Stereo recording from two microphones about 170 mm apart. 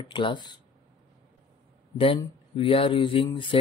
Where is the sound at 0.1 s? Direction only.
30° left (ahead or behind).